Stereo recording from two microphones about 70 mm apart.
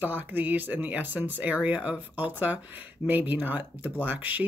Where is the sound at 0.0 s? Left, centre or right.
Right.